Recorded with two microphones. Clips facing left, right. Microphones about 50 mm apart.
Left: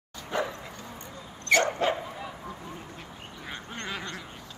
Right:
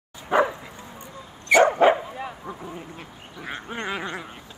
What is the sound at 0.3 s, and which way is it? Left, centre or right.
Bow-wow, right.